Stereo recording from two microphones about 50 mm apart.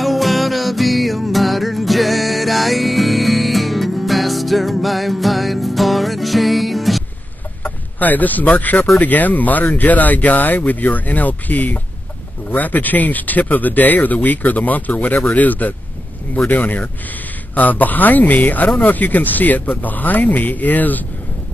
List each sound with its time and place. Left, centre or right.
0.0 s music: centre
7.6 s speech: left